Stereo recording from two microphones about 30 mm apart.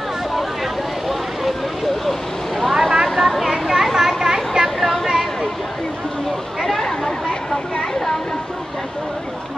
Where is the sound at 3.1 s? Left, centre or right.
Centre.